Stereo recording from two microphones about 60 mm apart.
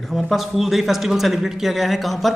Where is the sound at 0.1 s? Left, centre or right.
Centre.